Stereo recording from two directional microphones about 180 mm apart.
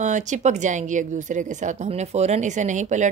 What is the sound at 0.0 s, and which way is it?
A woman's voice, 45° right (ahead or behind).